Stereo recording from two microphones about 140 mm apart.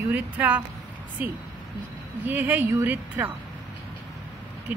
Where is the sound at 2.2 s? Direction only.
15° right (ahead or behind).